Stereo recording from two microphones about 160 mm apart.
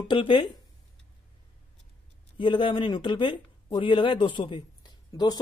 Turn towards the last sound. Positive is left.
turn(degrees=25)  # may be behind; listen again after turning